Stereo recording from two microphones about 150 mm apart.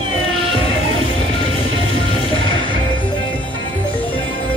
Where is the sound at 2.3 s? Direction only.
35° left (ahead or behind).